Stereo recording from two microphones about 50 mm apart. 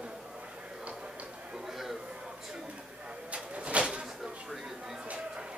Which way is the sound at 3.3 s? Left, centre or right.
Right.